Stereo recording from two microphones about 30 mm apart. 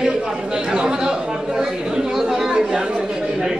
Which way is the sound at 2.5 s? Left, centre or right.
Right.